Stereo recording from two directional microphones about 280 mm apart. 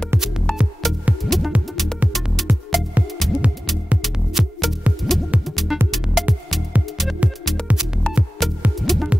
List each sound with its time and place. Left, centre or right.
0.1 s music: centre